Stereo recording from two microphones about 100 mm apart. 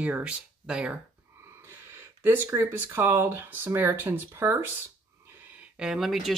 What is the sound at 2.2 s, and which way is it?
Speech, 20° right (ahead or behind).